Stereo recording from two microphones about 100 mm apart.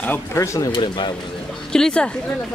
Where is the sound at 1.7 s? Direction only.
5° left (ahead or behind).